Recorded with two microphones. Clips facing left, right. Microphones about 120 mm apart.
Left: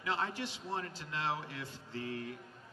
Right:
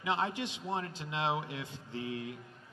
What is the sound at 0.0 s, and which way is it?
A man's voice, 20° right (ahead or behind).